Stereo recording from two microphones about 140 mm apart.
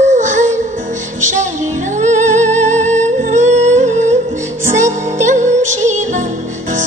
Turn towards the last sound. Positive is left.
turn(degrees=-60)  # may be behind; listen again after turning